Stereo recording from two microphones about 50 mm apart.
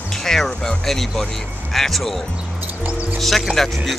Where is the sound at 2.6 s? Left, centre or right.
Right.